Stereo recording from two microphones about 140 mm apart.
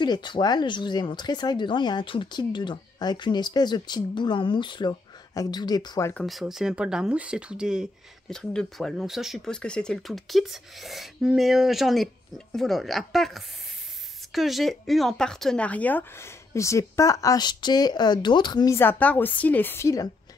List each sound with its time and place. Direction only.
0.0 s speech: 35° left (ahead or behind)
6.2 s speech: centre (ahead or behind); by 18.8 s 30° left (ahead or behind)
18.8 s a woman's voice: 10° left (ahead or behind)